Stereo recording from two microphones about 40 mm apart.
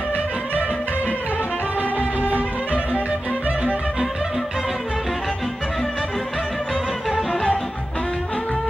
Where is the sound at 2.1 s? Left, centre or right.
Right.